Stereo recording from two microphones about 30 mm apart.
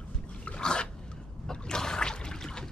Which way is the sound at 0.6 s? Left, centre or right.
Left.